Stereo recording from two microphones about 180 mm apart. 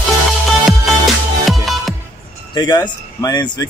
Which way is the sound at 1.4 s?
Centre (ahead or behind).